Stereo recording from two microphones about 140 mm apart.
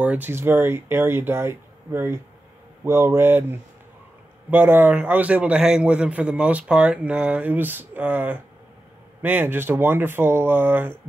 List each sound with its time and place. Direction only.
0.0 s a man's voice: 10° right (ahead or behind)